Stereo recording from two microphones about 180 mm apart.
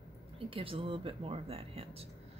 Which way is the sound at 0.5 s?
30° right (ahead or behind).